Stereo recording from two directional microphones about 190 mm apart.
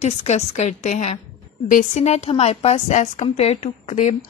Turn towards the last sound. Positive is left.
turn(degrees=35)  # may be behind; listen again after turning